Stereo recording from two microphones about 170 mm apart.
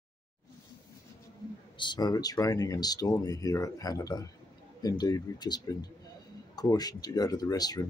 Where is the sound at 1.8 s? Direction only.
25° left (ahead or behind).